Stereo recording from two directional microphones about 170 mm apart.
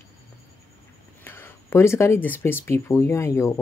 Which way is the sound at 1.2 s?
10° left (ahead or behind).